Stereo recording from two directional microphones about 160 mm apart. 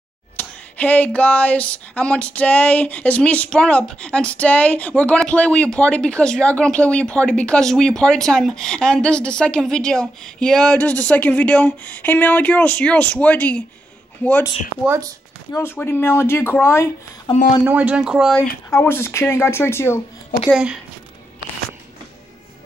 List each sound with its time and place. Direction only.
0.4 s speech: 10° left (ahead or behind)
14.9 s speech: 20° right (ahead or behind)
15.5 s speech: 15° left (ahead or behind)
17.3 s speech: 30° left (ahead or behind)
17.6 s speech: 10° right (ahead or behind)
18.7 s speech: 15° left (ahead or behind)
20.4 s a woman's voice: 5° right (ahead or behind)